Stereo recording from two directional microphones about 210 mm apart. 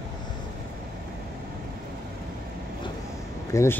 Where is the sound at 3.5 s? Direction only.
15° left (ahead or behind).